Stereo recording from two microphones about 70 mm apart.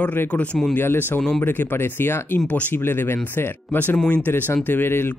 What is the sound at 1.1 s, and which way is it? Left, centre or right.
Speech, centre.